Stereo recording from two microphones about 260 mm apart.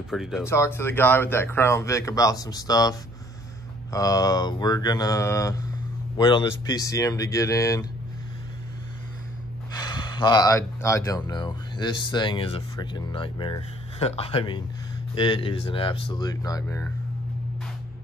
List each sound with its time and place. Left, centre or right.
0.1 s speech: centre
0.4 s speech: centre
9.8 s speech: centre